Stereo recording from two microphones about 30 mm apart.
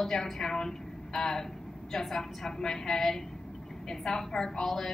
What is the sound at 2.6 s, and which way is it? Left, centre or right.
A woman's voice, centre.